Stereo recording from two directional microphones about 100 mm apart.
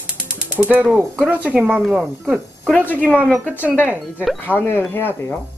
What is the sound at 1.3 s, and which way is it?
Speech, 15° right (ahead or behind).